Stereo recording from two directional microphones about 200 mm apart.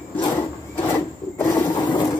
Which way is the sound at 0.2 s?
25° left (ahead or behind).